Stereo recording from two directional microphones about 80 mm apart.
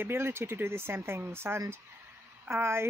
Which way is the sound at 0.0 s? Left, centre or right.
Right.